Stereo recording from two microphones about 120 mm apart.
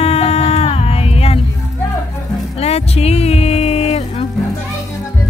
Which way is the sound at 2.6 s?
60° left (ahead or behind).